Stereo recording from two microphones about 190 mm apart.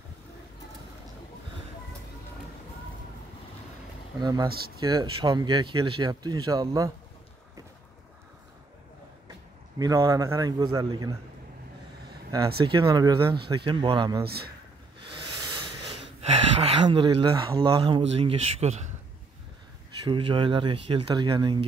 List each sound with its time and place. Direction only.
4.2 s speech: 20° right (ahead or behind)
9.8 s speech: 20° right (ahead or behind)
12.6 s speech: 25° right (ahead or behind)
14.2 s speech: 55° right (ahead or behind)
16.2 s speech: 30° right (ahead or behind)
20.1 s speech: 25° right (ahead or behind)